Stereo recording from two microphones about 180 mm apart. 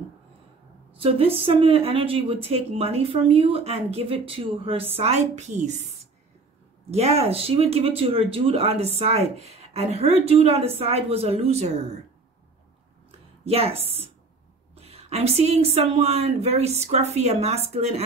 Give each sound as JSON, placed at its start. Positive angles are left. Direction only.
{"t": 0.9, "sound": "speech", "side_deg": -30}
{"t": 6.9, "sound": "speech", "side_deg": -35}
{"t": 13.5, "sound": "speech", "side_deg": -35}
{"t": 14.8, "sound": "speech", "side_deg": -35}